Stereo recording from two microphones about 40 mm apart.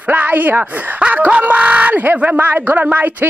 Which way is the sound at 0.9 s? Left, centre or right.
Right.